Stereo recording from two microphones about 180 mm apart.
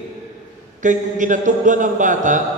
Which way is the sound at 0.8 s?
45° right (ahead or behind).